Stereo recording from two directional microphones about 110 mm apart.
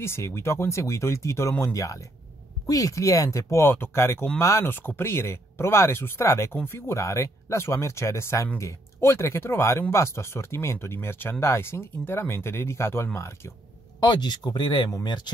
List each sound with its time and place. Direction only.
0.0 s speech: 25° left (ahead or behind)
13.9 s speech: 40° left (ahead or behind)